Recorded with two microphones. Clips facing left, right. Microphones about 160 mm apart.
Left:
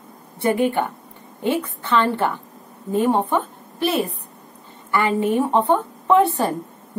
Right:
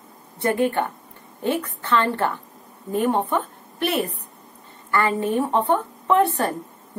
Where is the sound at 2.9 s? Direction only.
25° left (ahead or behind).